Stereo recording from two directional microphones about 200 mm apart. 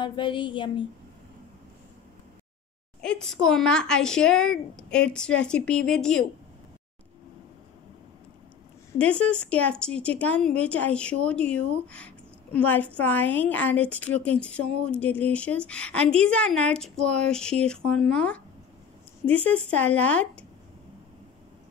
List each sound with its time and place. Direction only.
0.0 s speech: 25° left (ahead or behind)
3.0 s speech: 5° left (ahead or behind)
8.9 s a woman's voice: 5° left (ahead or behind)